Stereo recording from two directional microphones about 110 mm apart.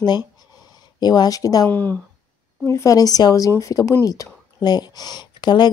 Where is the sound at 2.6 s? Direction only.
30° left (ahead or behind).